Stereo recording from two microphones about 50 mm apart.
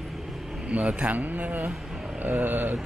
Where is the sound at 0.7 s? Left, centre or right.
Right.